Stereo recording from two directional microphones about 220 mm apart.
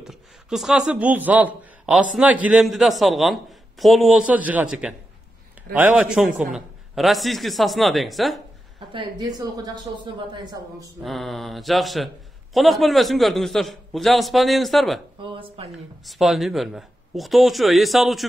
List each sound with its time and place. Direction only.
0.0 s speech: centre (ahead or behind)
8.7 s a woman's voice: 20° right (ahead or behind)
11.0 s speech: centre (ahead or behind)
15.2 s speech: 25° right (ahead or behind)
15.7 s speech: centre (ahead or behind)